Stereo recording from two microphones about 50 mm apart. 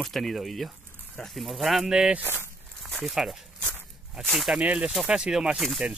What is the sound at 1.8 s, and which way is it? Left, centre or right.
Speech, centre.